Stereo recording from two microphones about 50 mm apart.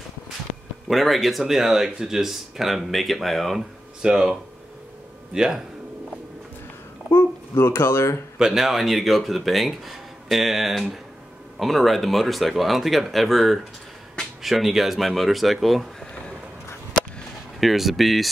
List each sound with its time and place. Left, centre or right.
0.8 s speech: centre
4.0 s speech: centre
5.3 s speech: centre
7.1 s speech: left
8.4 s speech: centre
17.6 s speech: centre